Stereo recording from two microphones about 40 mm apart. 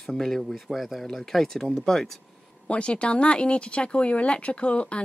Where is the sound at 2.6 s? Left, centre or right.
Left.